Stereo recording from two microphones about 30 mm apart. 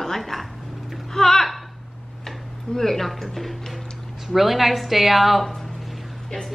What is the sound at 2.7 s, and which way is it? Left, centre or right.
A woman's voice, centre.